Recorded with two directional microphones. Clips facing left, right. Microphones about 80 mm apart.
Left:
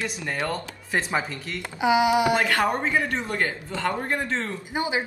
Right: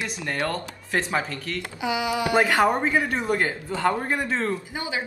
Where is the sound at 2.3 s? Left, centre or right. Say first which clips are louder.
Right 2 dB; centre.